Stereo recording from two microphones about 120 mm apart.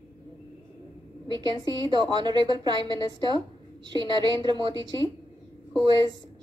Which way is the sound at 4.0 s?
40° right (ahead or behind).